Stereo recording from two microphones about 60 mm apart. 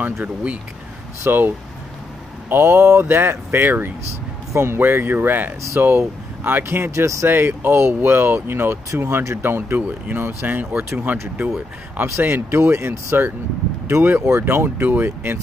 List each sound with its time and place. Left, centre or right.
0.0 s speech: right
1.2 s speech: right
2.5 s speech: right
12.0 s speech: right